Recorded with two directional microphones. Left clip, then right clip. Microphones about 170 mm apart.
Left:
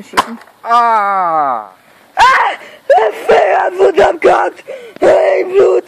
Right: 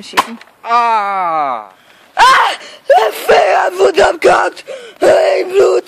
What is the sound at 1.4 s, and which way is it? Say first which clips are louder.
Speech: left 2 dB; 20° right (ahead or behind).